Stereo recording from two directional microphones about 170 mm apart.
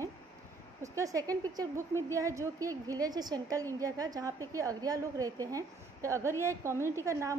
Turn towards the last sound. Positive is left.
turn(degrees=-15)  # may be behind; listen again after turning